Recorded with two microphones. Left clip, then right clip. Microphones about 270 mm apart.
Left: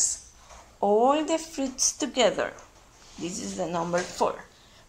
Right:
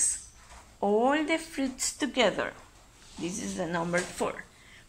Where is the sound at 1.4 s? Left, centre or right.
Left.